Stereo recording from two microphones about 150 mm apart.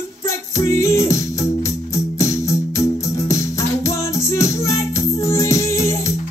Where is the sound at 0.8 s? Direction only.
20° left (ahead or behind).